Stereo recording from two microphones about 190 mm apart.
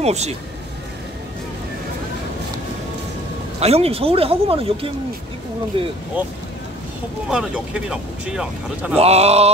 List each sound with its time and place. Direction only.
0.0 s speech: 35° right (ahead or behind)
3.5 s a man's voice: 35° right (ahead or behind)
6.2 s speech: 10° right (ahead or behind)
8.9 s speech: 35° right (ahead or behind)